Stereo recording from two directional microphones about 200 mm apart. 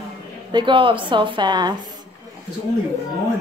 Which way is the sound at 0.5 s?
25° right (ahead or behind).